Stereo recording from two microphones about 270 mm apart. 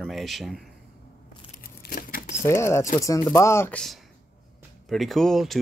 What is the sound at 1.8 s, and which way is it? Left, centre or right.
Crumpling, left.